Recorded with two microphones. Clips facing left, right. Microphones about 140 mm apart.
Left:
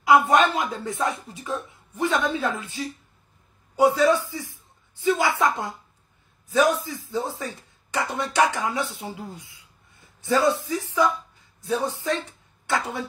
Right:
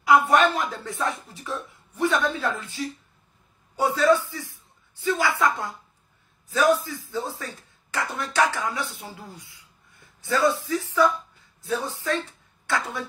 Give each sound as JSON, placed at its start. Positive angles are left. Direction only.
{"t": 0.0, "sound": "a man's voice", "side_deg": 20}
{"t": 7.0, "sound": "speech", "side_deg": 20}